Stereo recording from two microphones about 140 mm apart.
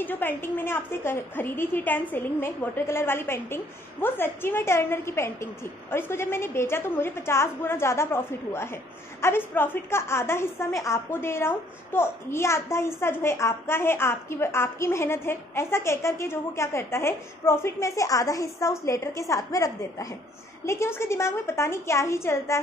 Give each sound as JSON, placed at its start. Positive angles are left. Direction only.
{"t": 0.0, "sound": "a woman's voice", "side_deg": 15}